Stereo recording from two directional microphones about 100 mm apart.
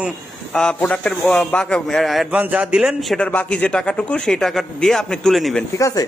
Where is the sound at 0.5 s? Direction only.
10° left (ahead or behind).